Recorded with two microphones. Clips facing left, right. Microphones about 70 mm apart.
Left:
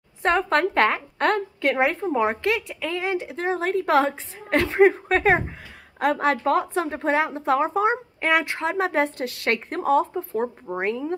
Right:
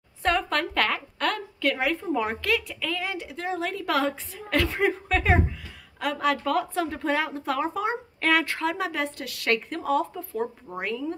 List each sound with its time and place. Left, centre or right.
0.2 s a woman's voice: left